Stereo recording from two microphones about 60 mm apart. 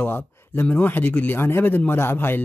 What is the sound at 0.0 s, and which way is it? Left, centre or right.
A man's voice, left.